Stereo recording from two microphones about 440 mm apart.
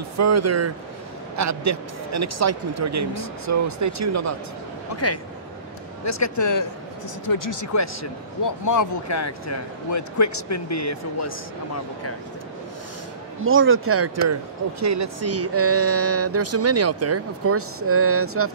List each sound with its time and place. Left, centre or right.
0.2 s speech: right
4.9 s speech: left
13.4 s speech: right